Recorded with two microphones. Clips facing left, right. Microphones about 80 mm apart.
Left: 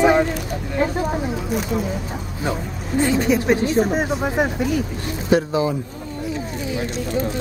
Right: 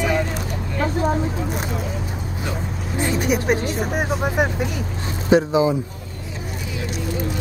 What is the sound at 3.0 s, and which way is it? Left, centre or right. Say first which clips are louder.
Speech: left 3 dB; centre.